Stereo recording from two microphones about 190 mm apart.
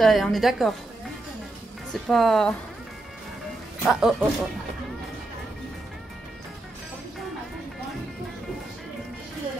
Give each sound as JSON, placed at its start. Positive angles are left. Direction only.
{"t": 0.0, "sound": "a woman's voice", "side_deg": 0}
{"t": 2.0, "sound": "a woman's voice", "side_deg": 0}
{"t": 3.8, "sound": "a woman's voice", "side_deg": 0}